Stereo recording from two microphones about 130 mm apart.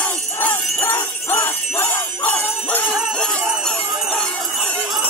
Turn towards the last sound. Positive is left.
turn(degrees=5)  # may be behind; listen again after turning